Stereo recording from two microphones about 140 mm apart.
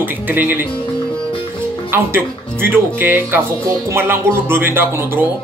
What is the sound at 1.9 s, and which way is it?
Speech, 15° right (ahead or behind).